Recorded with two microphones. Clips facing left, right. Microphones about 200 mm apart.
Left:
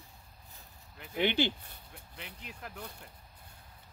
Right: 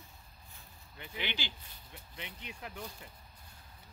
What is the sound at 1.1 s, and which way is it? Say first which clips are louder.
Speech: left 12 dB; 50° left (ahead or behind).